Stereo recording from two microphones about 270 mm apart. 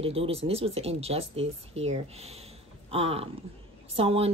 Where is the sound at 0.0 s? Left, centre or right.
Right.